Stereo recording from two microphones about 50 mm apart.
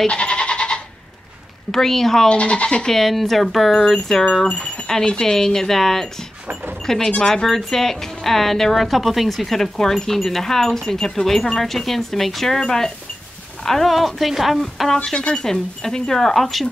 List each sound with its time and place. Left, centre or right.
0.0 s goat: centre
1.7 s speech: centre
2.2 s speech: left
2.9 s speech: centre
4.5 s speech: left; by 16.6 s centre